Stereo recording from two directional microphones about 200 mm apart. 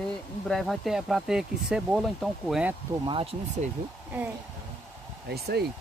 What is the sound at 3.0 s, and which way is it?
Speech, 25° right (ahead or behind).